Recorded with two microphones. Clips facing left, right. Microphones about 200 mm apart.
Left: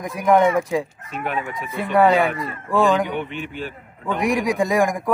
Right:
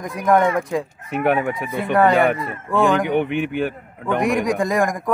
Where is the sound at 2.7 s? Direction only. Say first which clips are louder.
Even; centre (ahead or behind).